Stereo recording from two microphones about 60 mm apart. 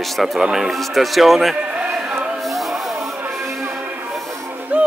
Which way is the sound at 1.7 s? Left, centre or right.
Centre.